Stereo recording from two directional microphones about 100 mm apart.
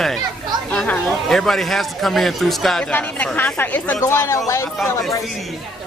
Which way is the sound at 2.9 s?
15° left (ahead or behind).